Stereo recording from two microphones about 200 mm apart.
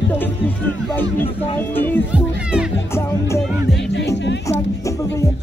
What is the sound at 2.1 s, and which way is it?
Music, 5° right (ahead or behind).